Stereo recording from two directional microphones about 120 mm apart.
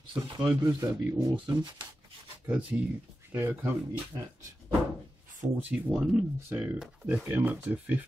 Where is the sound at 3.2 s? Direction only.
20° right (ahead or behind).